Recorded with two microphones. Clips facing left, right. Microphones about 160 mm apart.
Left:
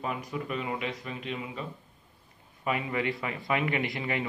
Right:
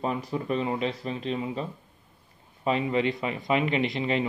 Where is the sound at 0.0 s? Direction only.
30° right (ahead or behind).